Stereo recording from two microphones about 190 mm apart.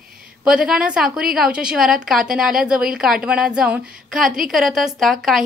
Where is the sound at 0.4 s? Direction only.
5° right (ahead or behind).